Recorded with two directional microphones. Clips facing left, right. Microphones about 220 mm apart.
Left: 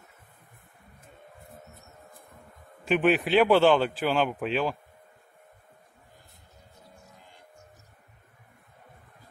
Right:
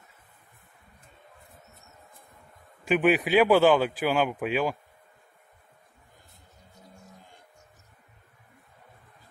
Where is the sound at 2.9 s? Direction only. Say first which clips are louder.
Even; 5° right (ahead or behind).